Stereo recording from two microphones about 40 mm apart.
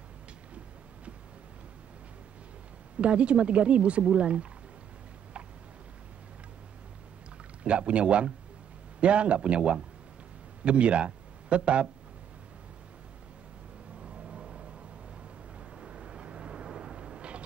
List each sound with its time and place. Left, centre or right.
3.0 s speech: right
7.6 s a man's voice: right
14.2 s vehicle: centre
15.8 s vehicle: right